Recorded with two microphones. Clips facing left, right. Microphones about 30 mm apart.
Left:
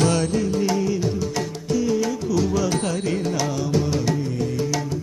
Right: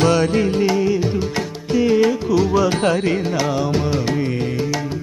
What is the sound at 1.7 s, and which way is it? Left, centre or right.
Music, right.